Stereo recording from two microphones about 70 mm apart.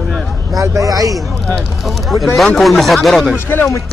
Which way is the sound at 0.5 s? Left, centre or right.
Right.